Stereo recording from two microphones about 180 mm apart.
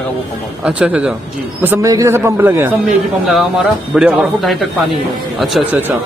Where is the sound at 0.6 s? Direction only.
5° right (ahead or behind).